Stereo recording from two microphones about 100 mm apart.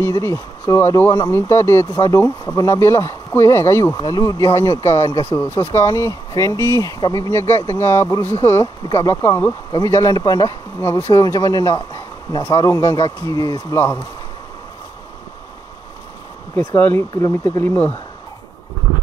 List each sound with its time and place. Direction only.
0.0 s speech: 30° left (ahead or behind)
4.0 s speech: 40° left (ahead or behind)
7.2 s speech: 25° left (ahead or behind)
10.8 s speech: 25° left (ahead or behind)
16.5 s speech: 20° left (ahead or behind)